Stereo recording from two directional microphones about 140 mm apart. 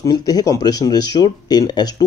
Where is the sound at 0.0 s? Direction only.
25° left (ahead or behind).